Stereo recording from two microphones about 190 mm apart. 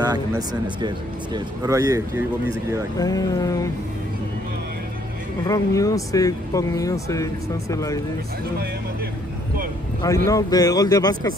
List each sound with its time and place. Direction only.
0.0 s speech: 20° right (ahead or behind)
3.0 s speech: 20° left (ahead or behind)
5.5 s speech: 15° left (ahead or behind)
10.0 s speech: 15° left (ahead or behind)